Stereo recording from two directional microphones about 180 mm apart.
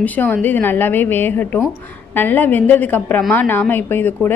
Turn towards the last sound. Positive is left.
turn(degrees=10)  # may be behind; listen again after turning